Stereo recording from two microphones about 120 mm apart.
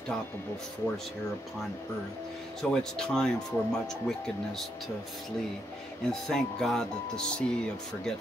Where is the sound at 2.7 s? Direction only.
5° left (ahead or behind).